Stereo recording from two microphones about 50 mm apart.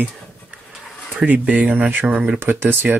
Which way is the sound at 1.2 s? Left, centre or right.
Right.